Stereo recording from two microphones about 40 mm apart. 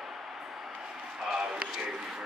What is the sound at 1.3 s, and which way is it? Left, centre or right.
Speech, right.